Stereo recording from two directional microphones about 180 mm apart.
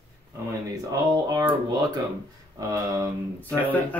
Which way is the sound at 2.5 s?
20° right (ahead or behind).